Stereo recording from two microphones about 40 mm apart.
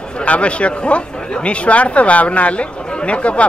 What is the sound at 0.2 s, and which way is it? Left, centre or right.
Speech, left.